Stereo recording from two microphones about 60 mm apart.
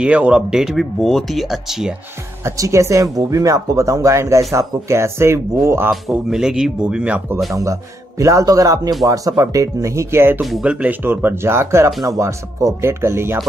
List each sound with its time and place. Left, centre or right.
0.0 s speech: centre
0.5 s speech: centre
1.0 s speech: centre
2.5 s speech: right
5.9 s speech: centre
7.5 s speech: right
10.6 s speech: right
11.0 s speech: right
12.0 s speech: right
12.8 s speech: right